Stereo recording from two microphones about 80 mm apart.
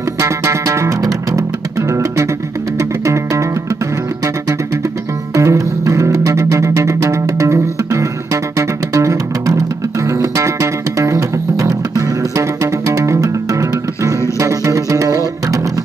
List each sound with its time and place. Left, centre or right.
0.2 s music: right
5.3 s music: right